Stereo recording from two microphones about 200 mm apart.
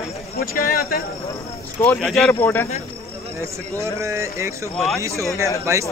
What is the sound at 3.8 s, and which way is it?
Speech, 15° right (ahead or behind).